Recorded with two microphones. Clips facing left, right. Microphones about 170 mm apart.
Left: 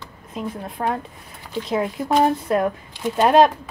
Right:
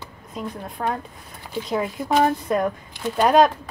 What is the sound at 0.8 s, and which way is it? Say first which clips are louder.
Speech: left 2 dB; 20° left (ahead or behind).